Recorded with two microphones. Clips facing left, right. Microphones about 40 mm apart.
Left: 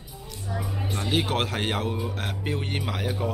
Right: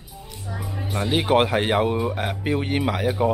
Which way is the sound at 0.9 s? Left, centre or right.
Centre.